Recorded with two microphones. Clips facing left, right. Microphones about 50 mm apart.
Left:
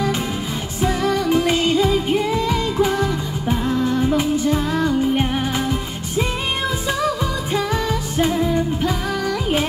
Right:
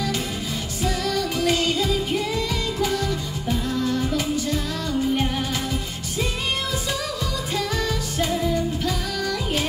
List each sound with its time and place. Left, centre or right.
0.8 s music: left
7.5 s music: left